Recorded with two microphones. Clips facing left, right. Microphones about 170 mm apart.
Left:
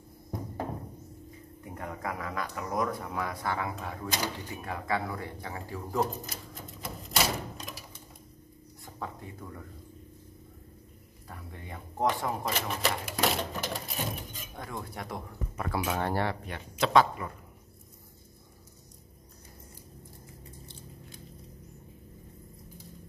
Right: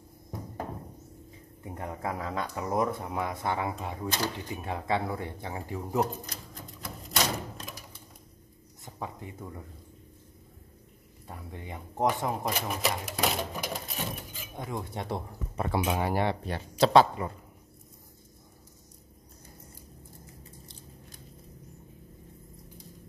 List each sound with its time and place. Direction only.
1.6 s speech: 25° right (ahead or behind)
6.8 s typewriter: centre (ahead or behind)
8.8 s speech: 20° right (ahead or behind)
11.2 s speech: 20° right (ahead or behind)
14.6 s speech: 20° right (ahead or behind)
16.4 s speech: 35° right (ahead or behind)